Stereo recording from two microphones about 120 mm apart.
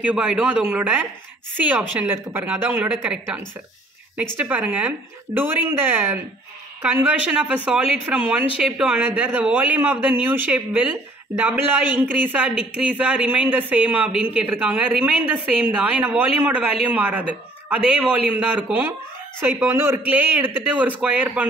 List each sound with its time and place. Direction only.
0.0 s speech: 10° right (ahead or behind)